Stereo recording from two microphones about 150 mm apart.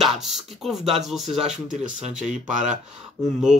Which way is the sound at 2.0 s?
55° right (ahead or behind).